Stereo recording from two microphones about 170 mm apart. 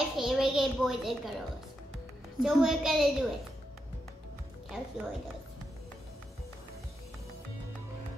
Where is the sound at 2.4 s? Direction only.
Centre (ahead or behind).